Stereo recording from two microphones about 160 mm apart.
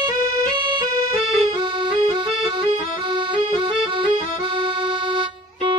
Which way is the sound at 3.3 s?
30° right (ahead or behind).